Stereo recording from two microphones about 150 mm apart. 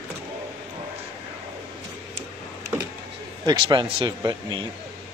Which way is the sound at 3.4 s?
30° right (ahead or behind).